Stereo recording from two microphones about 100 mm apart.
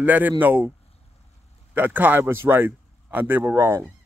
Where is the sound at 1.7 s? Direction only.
20° right (ahead or behind).